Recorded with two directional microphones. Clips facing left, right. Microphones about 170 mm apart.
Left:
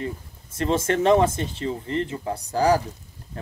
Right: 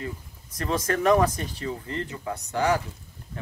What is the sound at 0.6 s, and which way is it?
Speech, 25° left (ahead or behind).